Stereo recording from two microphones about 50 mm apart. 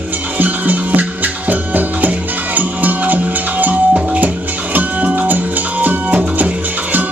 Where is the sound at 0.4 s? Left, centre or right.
Right.